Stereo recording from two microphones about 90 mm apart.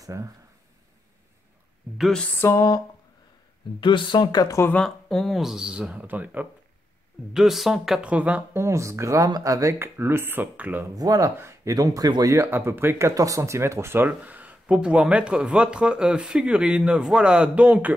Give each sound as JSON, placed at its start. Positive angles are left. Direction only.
{"t": 0.0, "sound": "speech", "side_deg": -35}
{"t": 2.4, "sound": "a sound", "side_deg": 35}
{"t": 3.8, "sound": "speech", "side_deg": 65}
{"t": 4.7, "sound": "speech", "side_deg": 5}
{"t": 7.3, "sound": "speech", "side_deg": -5}
{"t": 8.0, "sound": "speech", "side_deg": -15}
{"t": 8.5, "sound": "speech", "side_deg": -35}
{"t": 11.0, "sound": "speech", "side_deg": -40}
{"t": 12.4, "sound": "speech", "side_deg": -25}
{"t": 13.1, "sound": "speech", "side_deg": -40}